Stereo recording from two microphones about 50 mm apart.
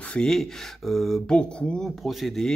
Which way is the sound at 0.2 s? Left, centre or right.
Centre.